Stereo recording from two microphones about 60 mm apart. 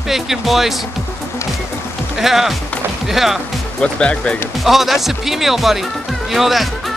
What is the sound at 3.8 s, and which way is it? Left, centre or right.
Speech, centre.